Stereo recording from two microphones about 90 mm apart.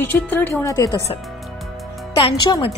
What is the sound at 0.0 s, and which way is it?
Speech, 20° left (ahead or behind).